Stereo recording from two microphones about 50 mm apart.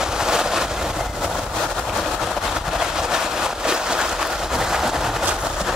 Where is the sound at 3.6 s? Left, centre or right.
Centre.